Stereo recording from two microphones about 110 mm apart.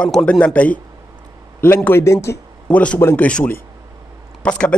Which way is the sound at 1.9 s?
25° left (ahead or behind).